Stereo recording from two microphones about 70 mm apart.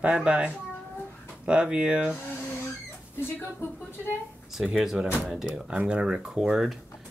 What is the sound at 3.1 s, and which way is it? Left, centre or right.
Rodents, left.